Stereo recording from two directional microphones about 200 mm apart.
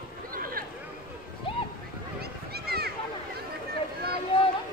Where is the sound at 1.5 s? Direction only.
25° left (ahead or behind).